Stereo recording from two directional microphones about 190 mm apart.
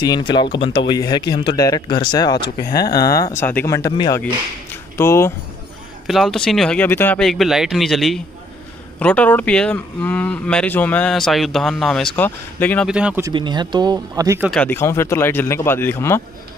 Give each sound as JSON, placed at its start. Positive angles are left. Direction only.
{"t": 0.0, "sound": "speech", "side_deg": 20}
{"t": 2.7, "sound": "speech", "side_deg": 55}
{"t": 3.0, "sound": "speech", "side_deg": 20}
{"t": 6.0, "sound": "speech", "side_deg": 0}
{"t": 12.8, "sound": "speech", "side_deg": -5}
{"t": 13.3, "sound": "speech", "side_deg": -25}
{"t": 14.5, "sound": "speech", "side_deg": 10}